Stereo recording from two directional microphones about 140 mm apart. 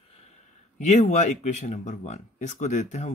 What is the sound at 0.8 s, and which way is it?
Speech, 55° left (ahead or behind).